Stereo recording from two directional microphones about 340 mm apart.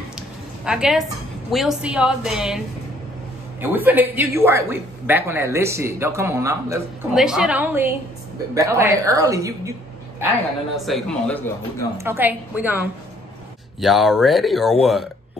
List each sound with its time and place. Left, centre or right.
0.7 s a woman's voice: centre
3.7 s a woman's voice: centre
10.9 s a woman's voice: centre
12.0 s a woman's voice: centre